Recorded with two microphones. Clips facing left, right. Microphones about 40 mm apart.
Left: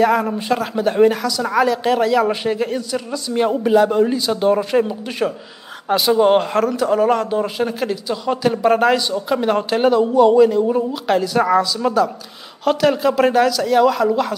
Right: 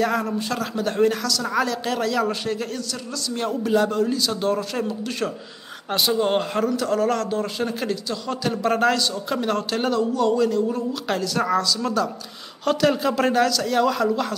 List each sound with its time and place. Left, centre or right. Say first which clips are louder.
0.0 s a man's voice: left 7 dB; centre
0.3 s a man's voice: left 6 dB; left
0.6 s a man's voice: left 6 dB; centre
5.9 s speech: left 6 dB; centre
6.1 s a man's voice: left 9 dB; centre
12.6 s speech: left 4 dB; centre